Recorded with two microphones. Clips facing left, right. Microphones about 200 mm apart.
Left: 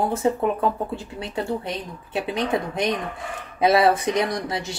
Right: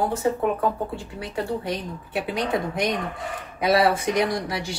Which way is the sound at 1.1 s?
25° left (ahead or behind).